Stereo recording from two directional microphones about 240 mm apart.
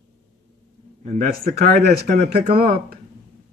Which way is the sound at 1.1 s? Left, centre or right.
Right.